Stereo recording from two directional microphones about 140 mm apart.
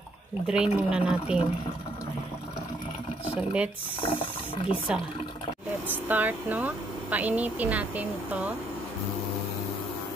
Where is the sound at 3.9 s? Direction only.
40° left (ahead or behind).